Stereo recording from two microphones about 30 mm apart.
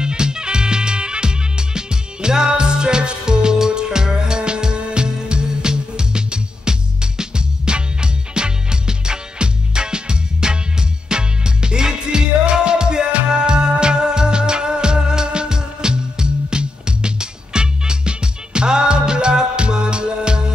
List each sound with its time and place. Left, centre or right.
0.0 s music: right